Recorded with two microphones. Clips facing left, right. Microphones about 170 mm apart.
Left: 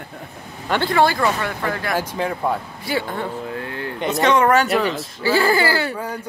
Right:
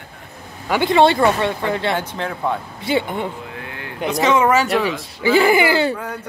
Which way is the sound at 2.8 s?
20° right (ahead or behind).